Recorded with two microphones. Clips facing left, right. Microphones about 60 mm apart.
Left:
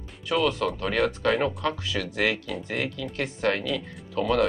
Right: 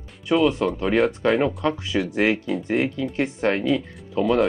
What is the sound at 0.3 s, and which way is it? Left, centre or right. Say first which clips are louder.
Speech: right 6 dB; centre.